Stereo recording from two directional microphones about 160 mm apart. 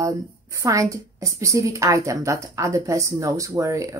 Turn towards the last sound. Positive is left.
turn(degrees=-20)  # may be behind; listen again after turning